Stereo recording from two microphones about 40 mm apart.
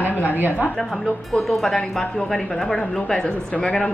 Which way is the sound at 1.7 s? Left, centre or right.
Centre.